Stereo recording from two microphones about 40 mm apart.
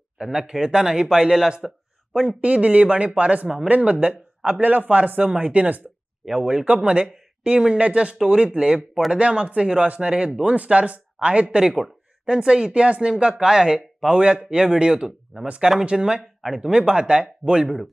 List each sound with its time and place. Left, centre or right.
0.2 s a man's voice: centre
2.2 s speech: right; by 14.1 s centre
14.1 s speech: right
15.8 s speech: right